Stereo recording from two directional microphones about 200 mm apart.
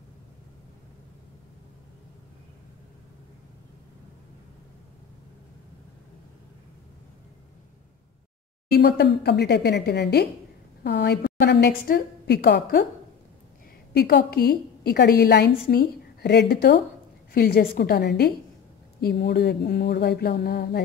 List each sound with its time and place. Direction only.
8.7 s a woman's voice: 55° left (ahead or behind)
13.9 s a woman's voice: 55° left (ahead or behind)